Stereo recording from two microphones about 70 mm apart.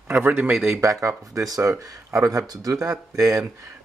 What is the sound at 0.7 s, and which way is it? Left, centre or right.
Speech, right.